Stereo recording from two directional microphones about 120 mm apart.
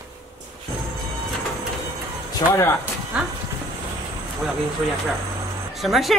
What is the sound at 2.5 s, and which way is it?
Speech, 20° left (ahead or behind).